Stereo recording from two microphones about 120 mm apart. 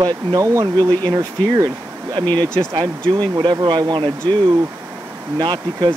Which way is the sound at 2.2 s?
15° left (ahead or behind).